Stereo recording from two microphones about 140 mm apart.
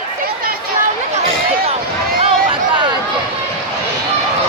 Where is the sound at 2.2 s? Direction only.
40° right (ahead or behind).